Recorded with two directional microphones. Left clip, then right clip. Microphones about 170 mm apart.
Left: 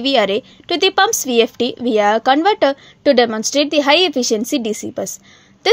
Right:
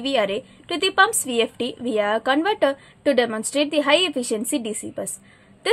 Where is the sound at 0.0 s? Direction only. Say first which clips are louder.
Left 7 dB; 40° left (ahead or behind).